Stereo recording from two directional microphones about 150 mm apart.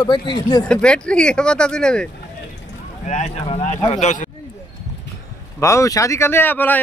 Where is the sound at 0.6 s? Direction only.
5° left (ahead or behind).